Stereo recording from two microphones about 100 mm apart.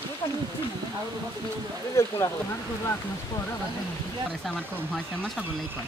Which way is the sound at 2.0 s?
30° left (ahead or behind).